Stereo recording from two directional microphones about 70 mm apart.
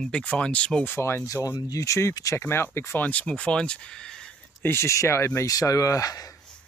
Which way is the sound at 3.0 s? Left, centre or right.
Centre.